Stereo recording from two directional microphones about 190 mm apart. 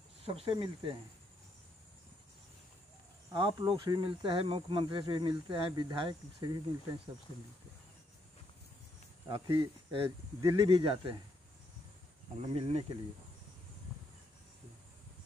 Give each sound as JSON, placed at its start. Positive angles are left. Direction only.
{"t": 0.2, "sound": "speech", "side_deg": -30}
{"t": 3.3, "sound": "speech", "side_deg": -25}
{"t": 9.3, "sound": "speech", "side_deg": -25}
{"t": 12.5, "sound": "speech", "side_deg": -30}